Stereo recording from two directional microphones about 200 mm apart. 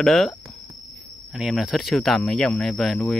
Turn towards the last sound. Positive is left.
turn(degrees=0)  # may be behind; listen again after turning